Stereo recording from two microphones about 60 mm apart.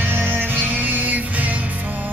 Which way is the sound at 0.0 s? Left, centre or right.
Right.